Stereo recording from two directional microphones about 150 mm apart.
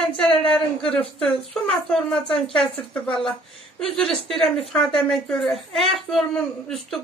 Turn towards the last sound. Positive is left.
turn(degrees=0)  # may be behind; listen again after turning